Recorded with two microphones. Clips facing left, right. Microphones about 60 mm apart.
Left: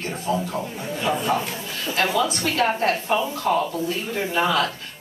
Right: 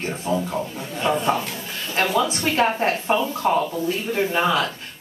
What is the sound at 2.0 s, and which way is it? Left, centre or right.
Speech, right.